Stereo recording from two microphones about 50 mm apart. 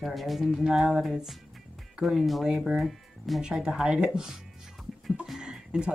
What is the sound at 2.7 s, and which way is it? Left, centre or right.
Speech, centre.